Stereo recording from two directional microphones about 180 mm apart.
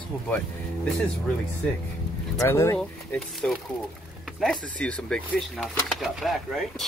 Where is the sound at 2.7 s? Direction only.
5° left (ahead or behind).